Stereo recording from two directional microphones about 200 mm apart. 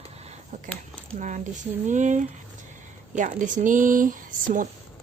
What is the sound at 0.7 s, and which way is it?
Speech, 5° left (ahead or behind).